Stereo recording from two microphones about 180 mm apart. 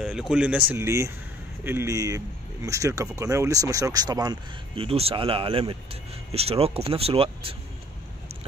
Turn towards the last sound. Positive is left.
turn(degrees=-30)  # may be behind; listen again after turning